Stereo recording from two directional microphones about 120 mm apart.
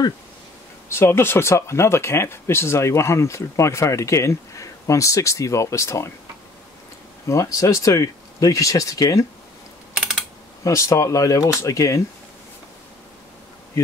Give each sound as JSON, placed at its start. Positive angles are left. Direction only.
{"t": 0.8, "sound": "speech", "side_deg": 20}
{"t": 7.2, "sound": "speech", "side_deg": 25}
{"t": 10.6, "sound": "speech", "side_deg": 25}